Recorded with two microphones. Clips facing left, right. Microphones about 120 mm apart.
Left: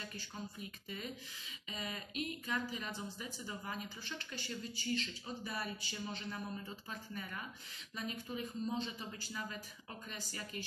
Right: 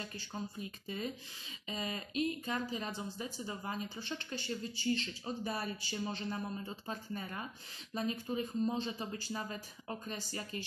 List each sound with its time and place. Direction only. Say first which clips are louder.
0.8 s speech: right 6 dB; 35° right (ahead or behind)